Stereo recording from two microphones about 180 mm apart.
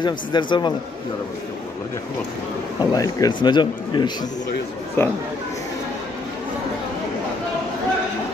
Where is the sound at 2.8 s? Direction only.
20° left (ahead or behind).